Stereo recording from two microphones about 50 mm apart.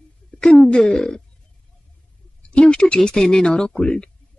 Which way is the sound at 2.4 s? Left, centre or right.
Left.